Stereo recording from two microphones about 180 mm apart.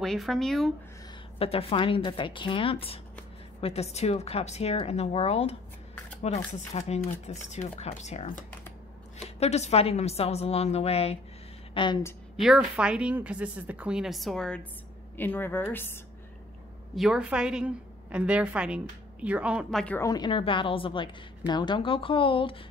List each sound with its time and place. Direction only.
0.0 s a woman's voice: centre (ahead or behind)
1.4 s a woman's voice: 30° left (ahead or behind)
12.4 s a woman's voice: 5° right (ahead or behind); by 16.0 s 10° left (ahead or behind)
16.9 s a woman's voice: centre (ahead or behind)
20.0 s a woman's voice: 20° left (ahead or behind)